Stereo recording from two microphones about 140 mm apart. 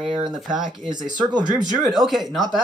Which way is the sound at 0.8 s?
30° right (ahead or behind).